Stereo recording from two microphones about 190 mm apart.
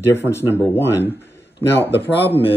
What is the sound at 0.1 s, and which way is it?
Speech, 15° left (ahead or behind).